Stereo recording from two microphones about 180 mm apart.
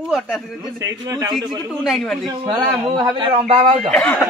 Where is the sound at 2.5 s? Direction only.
25° right (ahead or behind).